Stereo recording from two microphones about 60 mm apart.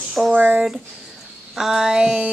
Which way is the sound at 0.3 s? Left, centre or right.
Right.